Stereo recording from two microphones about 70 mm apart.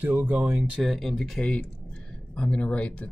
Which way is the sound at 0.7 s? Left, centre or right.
Centre.